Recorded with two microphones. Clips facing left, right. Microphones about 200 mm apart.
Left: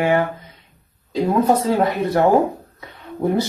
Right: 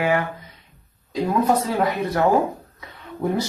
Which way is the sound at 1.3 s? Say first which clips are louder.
Left 3 dB; 25° left (ahead or behind).